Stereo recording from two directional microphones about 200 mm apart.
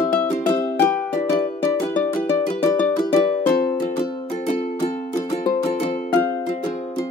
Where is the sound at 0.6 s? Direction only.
10° left (ahead or behind).